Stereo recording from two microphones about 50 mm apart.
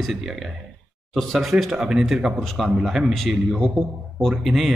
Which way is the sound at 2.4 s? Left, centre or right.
Centre.